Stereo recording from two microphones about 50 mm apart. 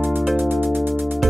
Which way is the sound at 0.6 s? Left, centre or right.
Right.